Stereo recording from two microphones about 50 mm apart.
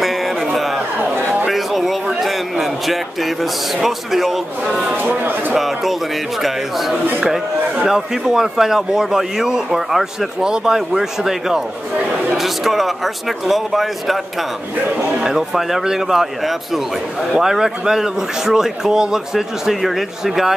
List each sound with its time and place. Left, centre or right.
0.0 s a sound: centre
2.6 s a man's voice: centre
4.9 s speech: right
5.5 s a man's voice: centre
15.1 s a man's voice: centre